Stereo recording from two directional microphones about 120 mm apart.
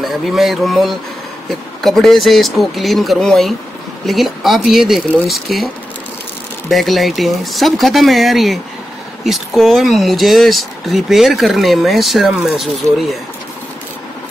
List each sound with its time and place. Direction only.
0.0 s speech: centre (ahead or behind)
6.7 s speech: centre (ahead or behind)